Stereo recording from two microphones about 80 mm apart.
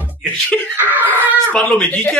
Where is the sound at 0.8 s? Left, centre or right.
Right.